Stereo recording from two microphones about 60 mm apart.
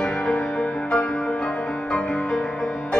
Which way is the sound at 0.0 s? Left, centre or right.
Centre.